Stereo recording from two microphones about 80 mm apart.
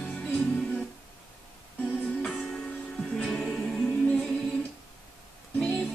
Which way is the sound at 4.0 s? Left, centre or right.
Centre.